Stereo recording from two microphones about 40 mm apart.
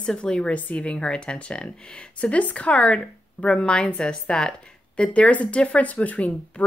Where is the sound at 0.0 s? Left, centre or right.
Left.